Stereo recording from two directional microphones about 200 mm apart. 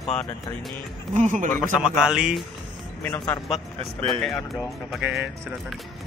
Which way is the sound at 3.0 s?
10° left (ahead or behind).